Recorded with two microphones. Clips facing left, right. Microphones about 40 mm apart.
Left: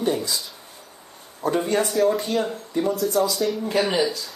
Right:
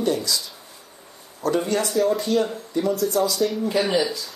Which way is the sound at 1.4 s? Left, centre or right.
Left.